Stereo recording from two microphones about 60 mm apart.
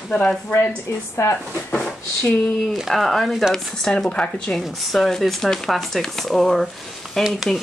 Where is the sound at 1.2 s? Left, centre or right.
Left.